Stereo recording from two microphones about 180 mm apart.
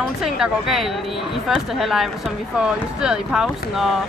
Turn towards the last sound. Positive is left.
turn(degrees=0)  # may be behind; listen again after turning